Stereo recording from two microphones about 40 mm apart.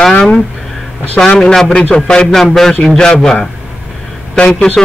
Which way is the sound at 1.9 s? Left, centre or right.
Left.